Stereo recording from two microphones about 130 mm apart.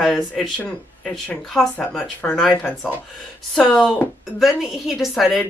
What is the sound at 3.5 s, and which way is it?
Speech, 5° left (ahead or behind).